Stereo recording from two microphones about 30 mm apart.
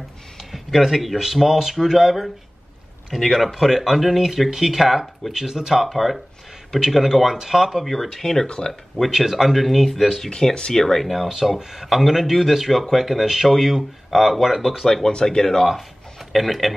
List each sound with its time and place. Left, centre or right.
0.5 s speech: centre
3.2 s speech: centre
5.3 s speech: centre
5.9 s speech: centre
7.9 s speech: centre
8.5 s speech: left
9.1 s speech: centre
9.5 s speech: centre
10.3 s speech: left
10.7 s speech: centre
11.2 s speech: centre
12.3 s speech: centre
15.0 s speech: left
15.6 s speech: centre